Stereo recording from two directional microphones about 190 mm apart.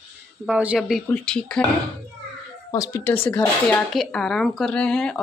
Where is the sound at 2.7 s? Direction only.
15° left (ahead or behind).